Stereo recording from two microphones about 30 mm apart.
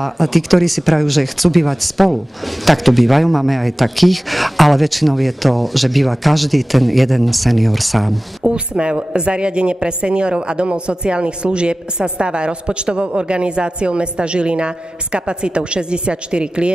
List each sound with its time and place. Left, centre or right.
0.0 s speech: centre
8.5 s a woman's voice: right